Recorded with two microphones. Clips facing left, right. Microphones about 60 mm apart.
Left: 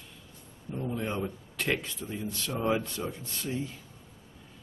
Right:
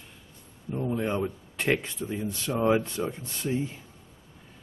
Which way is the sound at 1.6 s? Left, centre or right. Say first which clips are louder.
Right 4 dB; right.